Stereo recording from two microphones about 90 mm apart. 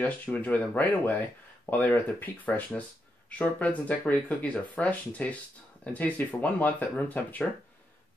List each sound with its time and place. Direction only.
0.0 s speech: 20° left (ahead or behind)